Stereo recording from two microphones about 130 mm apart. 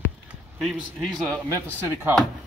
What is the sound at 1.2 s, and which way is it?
Speech, 20° right (ahead or behind).